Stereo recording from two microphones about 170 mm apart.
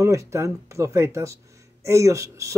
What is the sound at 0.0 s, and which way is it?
Speech, 15° right (ahead or behind).